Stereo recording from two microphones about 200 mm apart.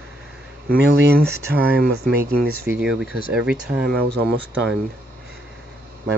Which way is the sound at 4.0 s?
55° right (ahead or behind).